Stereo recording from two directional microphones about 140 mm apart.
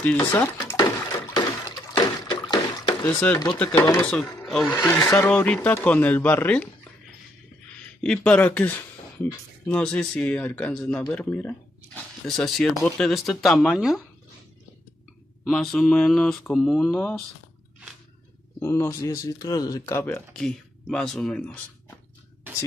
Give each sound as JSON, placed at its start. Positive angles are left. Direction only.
{"t": 0.0, "sound": "speech", "side_deg": 10}
{"t": 0.7, "sound": "water", "side_deg": 20}
{"t": 3.5, "sound": "speech", "side_deg": 10}
{"t": 4.9, "sound": "speech", "side_deg": 20}
{"t": 5.3, "sound": "speech", "side_deg": 10}
{"t": 8.0, "sound": "speech", "side_deg": 5}
{"t": 15.4, "sound": "speech", "side_deg": 0}
{"t": 18.6, "sound": "speech", "side_deg": 20}
{"t": 20.3, "sound": "speech", "side_deg": 5}